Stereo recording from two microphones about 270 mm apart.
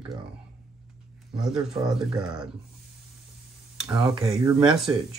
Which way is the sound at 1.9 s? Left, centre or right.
Centre.